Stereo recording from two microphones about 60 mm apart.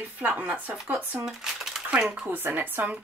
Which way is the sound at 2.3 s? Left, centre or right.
Right.